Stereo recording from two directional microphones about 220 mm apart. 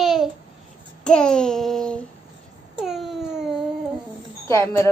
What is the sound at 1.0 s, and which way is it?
Babbling, 5° left (ahead or behind).